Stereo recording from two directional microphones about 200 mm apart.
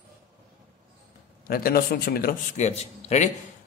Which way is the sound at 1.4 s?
50° left (ahead or behind).